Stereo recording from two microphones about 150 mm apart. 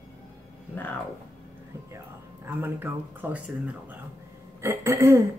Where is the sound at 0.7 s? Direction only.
15° left (ahead or behind).